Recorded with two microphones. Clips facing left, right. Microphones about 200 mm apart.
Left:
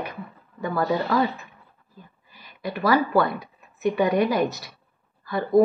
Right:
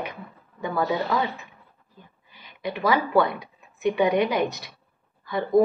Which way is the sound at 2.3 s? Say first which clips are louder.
Right 1 dB; 20° right (ahead or behind).